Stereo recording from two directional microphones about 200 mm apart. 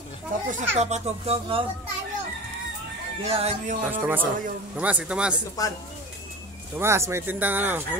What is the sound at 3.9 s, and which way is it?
Speech, 10° right (ahead or behind).